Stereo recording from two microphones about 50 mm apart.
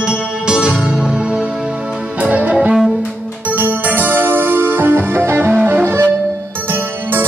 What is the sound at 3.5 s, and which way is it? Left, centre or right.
Music, right.